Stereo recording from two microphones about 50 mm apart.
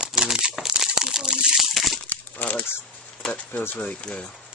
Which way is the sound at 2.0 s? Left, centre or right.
Left.